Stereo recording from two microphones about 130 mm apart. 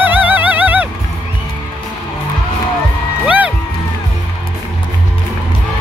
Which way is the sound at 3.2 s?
10° right (ahead or behind).